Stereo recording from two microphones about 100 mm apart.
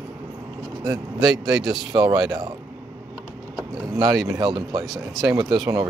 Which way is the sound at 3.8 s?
40° right (ahead or behind).